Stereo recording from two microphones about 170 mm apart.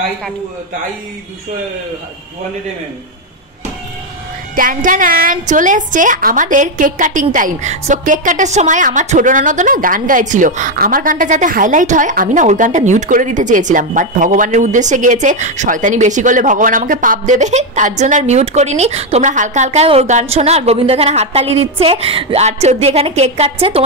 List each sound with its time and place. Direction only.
4.6 s a woman's voice: 50° right (ahead or behind); by 23.8 s 35° right (ahead or behind)